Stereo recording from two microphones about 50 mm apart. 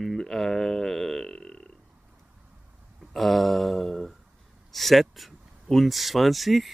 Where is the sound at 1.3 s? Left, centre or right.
Left.